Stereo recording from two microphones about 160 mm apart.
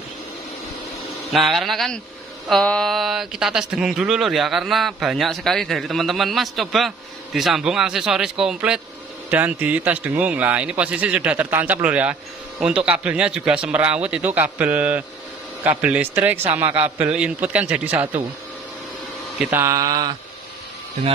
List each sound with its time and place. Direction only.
1.3 s a man's voice: centre (ahead or behind)
19.5 s speech: 20° right (ahead or behind)